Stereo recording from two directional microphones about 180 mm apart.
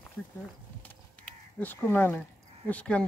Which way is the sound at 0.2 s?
10° left (ahead or behind).